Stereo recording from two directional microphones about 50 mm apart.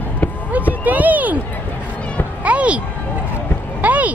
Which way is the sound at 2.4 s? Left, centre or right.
Right.